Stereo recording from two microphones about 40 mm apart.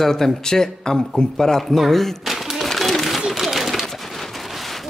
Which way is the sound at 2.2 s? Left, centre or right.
Centre.